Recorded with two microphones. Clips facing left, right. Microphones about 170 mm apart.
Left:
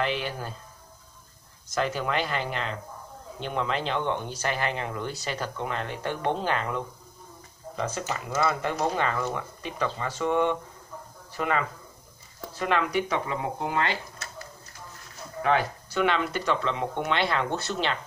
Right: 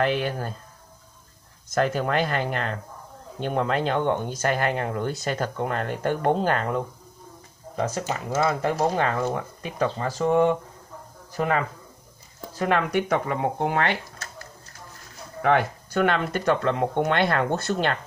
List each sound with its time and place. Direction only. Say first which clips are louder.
0.0 s speech: right 5 dB; 50° right (ahead or behind)
1.7 s speech: right 4 dB; 50° right (ahead or behind)
8.4 s speech: right 4 dB; 35° right (ahead or behind)
9.1 s speech: right 4 dB; 30° right (ahead or behind); by 13.9 s 60° right (ahead or behind)
15.4 s speech: right 3 dB; 55° right (ahead or behind)